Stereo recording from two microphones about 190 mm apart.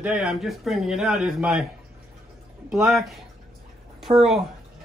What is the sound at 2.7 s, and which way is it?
Speech, centre (ahead or behind).